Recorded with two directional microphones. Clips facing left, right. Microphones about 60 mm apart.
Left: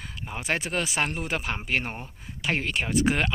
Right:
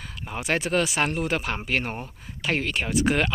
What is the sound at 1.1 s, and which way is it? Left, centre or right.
Speech, centre.